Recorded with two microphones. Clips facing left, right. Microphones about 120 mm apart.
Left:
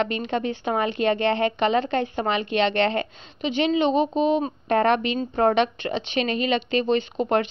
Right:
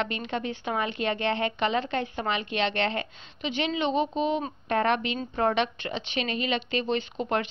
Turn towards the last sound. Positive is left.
turn(degrees=45)  # may be behind; listen again after turning